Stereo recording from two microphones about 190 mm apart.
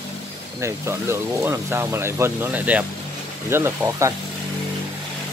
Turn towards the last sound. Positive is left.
turn(degrees=-15)  # may be behind; listen again after turning